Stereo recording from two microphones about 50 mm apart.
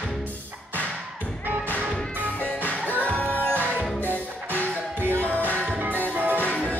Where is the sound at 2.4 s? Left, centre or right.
Left.